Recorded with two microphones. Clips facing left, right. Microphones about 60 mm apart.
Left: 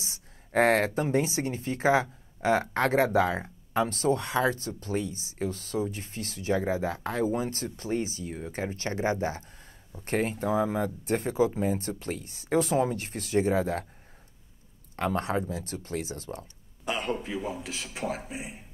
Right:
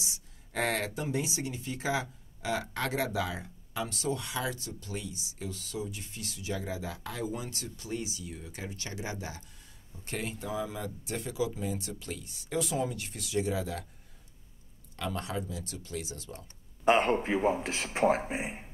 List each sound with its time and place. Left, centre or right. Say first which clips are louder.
0.0 s speech: even; left
15.0 s speech: left 7 dB; left
16.3 s speech: left 4 dB; right